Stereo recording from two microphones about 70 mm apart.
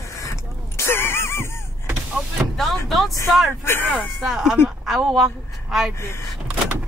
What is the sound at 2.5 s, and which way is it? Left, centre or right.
Vehicle, centre.